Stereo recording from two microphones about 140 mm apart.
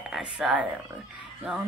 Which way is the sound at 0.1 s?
5° right (ahead or behind).